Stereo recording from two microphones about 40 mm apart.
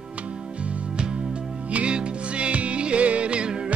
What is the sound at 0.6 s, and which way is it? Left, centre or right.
Music, right.